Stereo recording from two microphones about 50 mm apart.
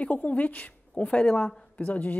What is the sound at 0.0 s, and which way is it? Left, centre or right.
Speech, left.